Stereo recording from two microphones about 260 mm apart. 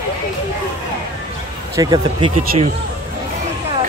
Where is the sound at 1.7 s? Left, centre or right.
Centre.